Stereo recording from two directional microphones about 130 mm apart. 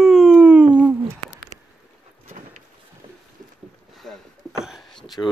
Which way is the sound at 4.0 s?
Centre (ahead or behind).